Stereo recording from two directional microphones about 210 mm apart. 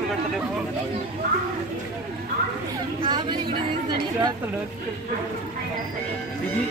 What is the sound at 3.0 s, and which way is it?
Chatter, 20° right (ahead or behind).